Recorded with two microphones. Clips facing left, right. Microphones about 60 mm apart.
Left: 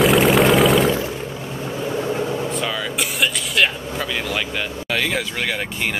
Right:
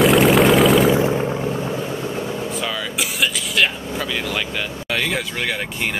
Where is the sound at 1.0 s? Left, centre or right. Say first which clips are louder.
Right 7 dB; right.